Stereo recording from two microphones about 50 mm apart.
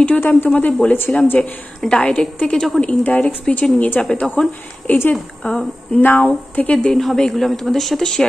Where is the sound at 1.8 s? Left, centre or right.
Centre.